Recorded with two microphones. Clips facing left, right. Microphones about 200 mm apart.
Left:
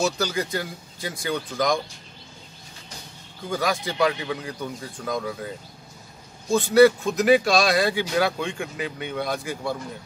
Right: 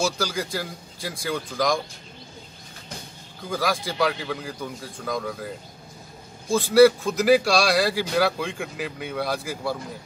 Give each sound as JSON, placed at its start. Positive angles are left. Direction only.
{"t": 0.0, "sound": "speech", "side_deg": 0}
{"t": 3.4, "sound": "speech", "side_deg": 0}
{"t": 6.5, "sound": "speech", "side_deg": 0}